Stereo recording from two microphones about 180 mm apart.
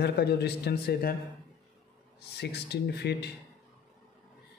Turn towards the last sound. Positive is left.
turn(degrees=65)  # may be behind; listen again after turning